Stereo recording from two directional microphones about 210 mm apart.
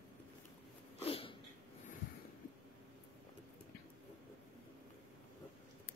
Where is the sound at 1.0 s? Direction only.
25° left (ahead or behind).